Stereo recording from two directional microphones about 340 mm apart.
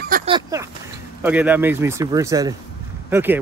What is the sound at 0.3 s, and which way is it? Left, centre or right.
Speech, centre.